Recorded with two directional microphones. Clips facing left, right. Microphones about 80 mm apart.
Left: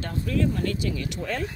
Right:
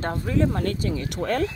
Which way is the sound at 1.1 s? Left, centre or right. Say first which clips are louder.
Right 6 dB; right.